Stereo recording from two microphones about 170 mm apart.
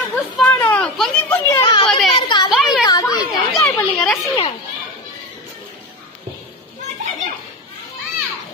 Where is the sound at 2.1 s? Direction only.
30° left (ahead or behind).